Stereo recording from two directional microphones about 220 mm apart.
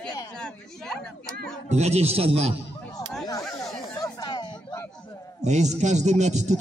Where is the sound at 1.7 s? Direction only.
30° right (ahead or behind).